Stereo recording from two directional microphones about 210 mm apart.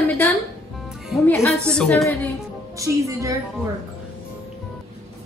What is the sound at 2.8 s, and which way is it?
Speech, 15° right (ahead or behind).